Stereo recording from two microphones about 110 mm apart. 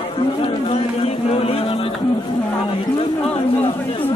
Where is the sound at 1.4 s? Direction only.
60° left (ahead or behind).